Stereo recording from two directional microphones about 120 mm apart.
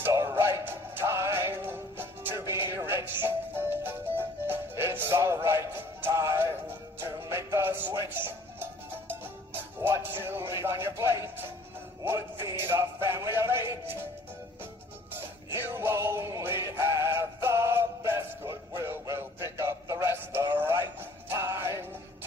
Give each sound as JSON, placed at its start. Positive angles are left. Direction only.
{"t": 0.0, "sound": "music", "side_deg": -25}
{"t": 10.6, "sound": "a sound", "side_deg": -20}
{"t": 12.4, "sound": "music", "side_deg": -20}
{"t": 13.3, "sound": "a sound", "side_deg": -20}
{"t": 15.6, "sound": "music", "side_deg": -20}
{"t": 18.9, "sound": "synthetic singing", "side_deg": -25}
{"t": 21.4, "sound": "music", "side_deg": -20}